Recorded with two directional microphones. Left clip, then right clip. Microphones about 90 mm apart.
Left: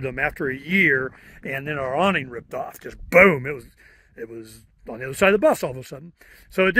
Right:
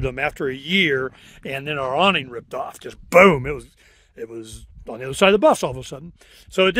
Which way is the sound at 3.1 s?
25° right (ahead or behind).